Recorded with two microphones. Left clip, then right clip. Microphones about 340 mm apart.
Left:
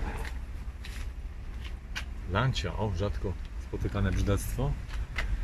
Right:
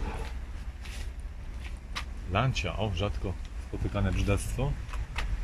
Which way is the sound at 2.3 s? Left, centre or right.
Centre.